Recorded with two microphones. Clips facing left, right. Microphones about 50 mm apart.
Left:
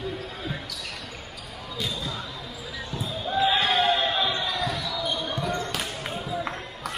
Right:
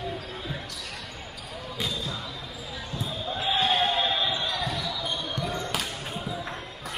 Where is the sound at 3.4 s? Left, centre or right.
Left.